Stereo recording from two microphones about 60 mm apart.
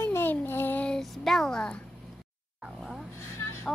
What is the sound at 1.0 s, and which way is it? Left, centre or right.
Speech, centre.